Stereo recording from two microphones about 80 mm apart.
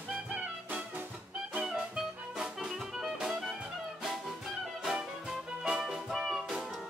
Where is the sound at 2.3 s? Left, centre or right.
Centre.